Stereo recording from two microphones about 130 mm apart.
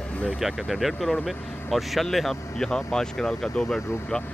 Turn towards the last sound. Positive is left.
turn(degrees=0)  # may be behind; listen again after turning